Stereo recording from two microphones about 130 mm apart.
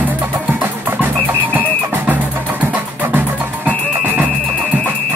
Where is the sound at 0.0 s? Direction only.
15° right (ahead or behind).